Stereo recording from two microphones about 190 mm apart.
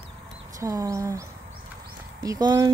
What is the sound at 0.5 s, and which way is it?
Speech, 20° right (ahead or behind).